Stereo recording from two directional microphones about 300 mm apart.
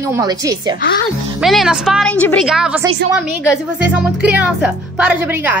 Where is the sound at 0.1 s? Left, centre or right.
Centre.